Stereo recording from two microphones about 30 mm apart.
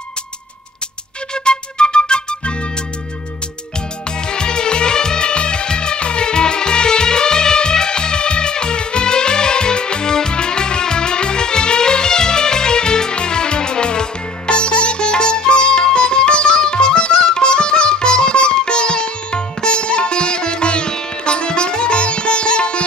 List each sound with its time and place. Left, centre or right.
1.3 s flute: left
4.3 s music: left
15.8 s sitar: left